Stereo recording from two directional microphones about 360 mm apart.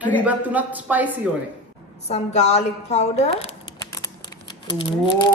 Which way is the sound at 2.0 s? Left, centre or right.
Centre.